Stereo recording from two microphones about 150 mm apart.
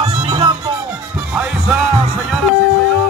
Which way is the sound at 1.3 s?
10° right (ahead or behind).